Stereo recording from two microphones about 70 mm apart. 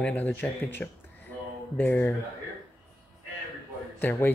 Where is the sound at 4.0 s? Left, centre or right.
Left.